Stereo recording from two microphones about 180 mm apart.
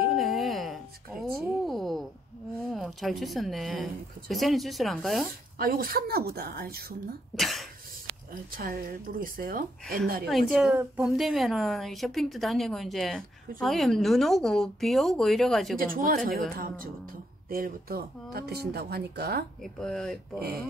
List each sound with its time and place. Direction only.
0.1 s a sound: centre (ahead or behind)
2.7 s a woman's voice: centre (ahead or behind)
5.6 s speech: 55° right (ahead or behind)
7.3 s speech: centre (ahead or behind)
8.5 s a woman's voice: 55° right (ahead or behind)
10.7 s a woman's voice: 10° right (ahead or behind)
15.7 s a woman's voice: 50° right (ahead or behind)
19.6 s a woman's voice: 5° left (ahead or behind)
20.3 s speech: 60° right (ahead or behind)